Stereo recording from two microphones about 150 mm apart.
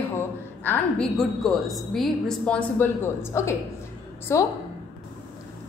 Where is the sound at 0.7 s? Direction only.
5° left (ahead or behind).